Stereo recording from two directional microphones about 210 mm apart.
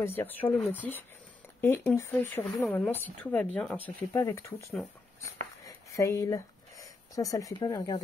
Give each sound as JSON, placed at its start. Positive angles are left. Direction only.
{"t": 0.0, "sound": "speech", "side_deg": 10}
{"t": 5.9, "sound": "speech", "side_deg": 15}